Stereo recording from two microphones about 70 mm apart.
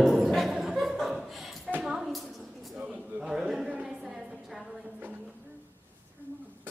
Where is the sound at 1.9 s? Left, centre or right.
Centre.